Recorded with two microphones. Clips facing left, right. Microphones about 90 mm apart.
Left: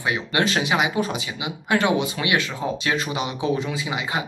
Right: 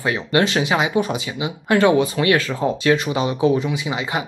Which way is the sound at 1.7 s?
35° right (ahead or behind).